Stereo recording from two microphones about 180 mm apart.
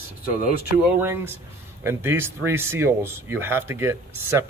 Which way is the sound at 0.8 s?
10° right (ahead or behind).